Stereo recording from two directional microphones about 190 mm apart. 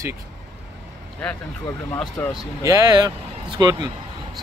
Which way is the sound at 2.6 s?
20° right (ahead or behind).